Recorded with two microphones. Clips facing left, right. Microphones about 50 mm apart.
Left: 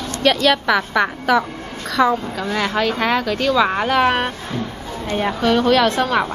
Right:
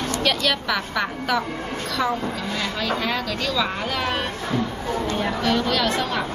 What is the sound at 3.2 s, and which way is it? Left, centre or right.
A woman's voice, left.